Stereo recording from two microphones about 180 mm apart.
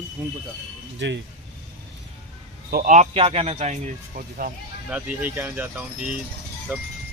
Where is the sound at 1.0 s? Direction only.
85° right.